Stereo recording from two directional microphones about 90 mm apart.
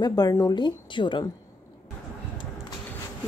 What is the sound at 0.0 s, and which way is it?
Speech, 45° left (ahead or behind).